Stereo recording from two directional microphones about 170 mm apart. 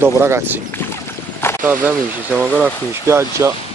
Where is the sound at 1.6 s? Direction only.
10° right (ahead or behind).